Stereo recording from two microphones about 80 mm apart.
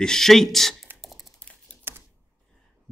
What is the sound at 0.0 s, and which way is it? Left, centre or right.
Speech, centre.